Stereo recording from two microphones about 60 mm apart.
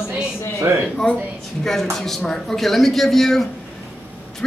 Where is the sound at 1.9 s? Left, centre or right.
Centre.